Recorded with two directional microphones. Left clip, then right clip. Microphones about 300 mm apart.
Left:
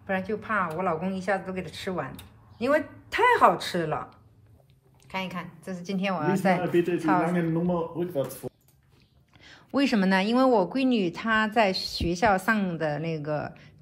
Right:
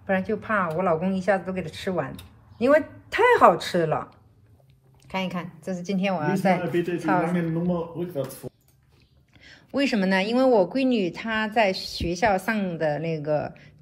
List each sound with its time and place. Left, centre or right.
0.0 s a woman's voice: centre
7.2 s a man's voice: centre
9.4 s speech: centre